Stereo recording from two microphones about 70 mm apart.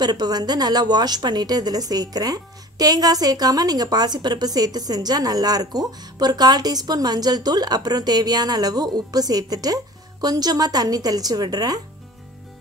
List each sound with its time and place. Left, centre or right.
0.0 s a woman's voice: right